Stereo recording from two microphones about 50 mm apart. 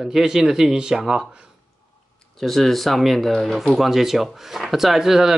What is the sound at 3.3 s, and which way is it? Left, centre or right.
Speech, centre.